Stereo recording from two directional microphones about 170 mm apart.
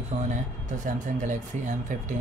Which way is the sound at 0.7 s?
50° right (ahead or behind).